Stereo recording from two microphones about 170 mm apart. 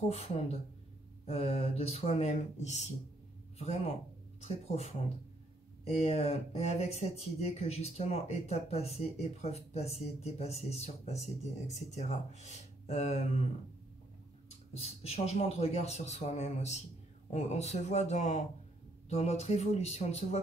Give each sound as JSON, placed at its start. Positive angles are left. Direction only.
{"t": 1.2, "sound": "speech", "side_deg": 35}
{"t": 14.7, "sound": "speech", "side_deg": 35}